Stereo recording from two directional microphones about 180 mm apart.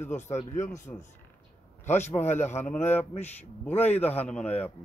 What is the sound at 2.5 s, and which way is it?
A man's voice, 15° left (ahead or behind).